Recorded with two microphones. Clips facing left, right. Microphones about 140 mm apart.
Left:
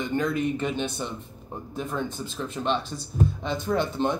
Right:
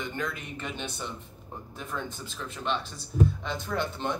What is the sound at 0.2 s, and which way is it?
Speech, 25° left (ahead or behind).